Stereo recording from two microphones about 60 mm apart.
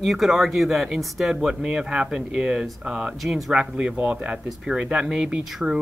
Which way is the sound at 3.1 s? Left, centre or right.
Centre.